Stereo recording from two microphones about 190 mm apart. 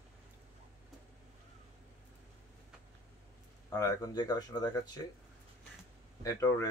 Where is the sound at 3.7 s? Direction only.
20° left (ahead or behind).